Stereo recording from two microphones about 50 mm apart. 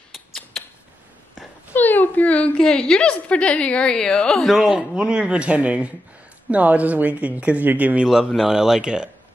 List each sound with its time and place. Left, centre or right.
0.1 s a sound: centre
1.7 s a sound: left
2.5 s a woman's voice: centre
4.4 s speech: centre
4.7 s a man's voice: centre; by 8.0 s right
8.4 s speech: centre